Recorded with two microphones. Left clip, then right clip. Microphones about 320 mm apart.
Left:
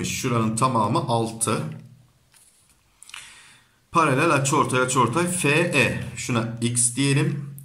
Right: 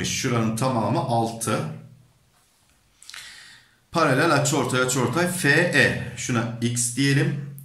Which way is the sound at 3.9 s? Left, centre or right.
Centre.